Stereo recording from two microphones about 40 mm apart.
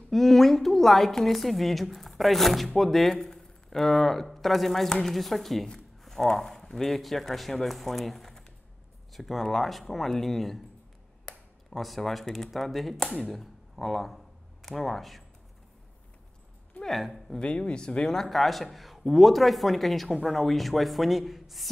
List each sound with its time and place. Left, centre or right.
0.1 s a woman's voice: centre
11.2 s a sound: centre
12.4 s speech: centre
16.8 s a woman's voice: centre
17.4 s speech: left
18.2 s a woman's voice: centre